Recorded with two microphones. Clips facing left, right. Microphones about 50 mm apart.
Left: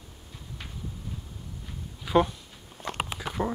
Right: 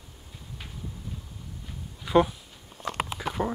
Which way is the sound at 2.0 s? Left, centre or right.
Centre.